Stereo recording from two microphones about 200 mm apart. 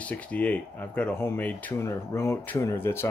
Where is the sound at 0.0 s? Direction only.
5° left (ahead or behind).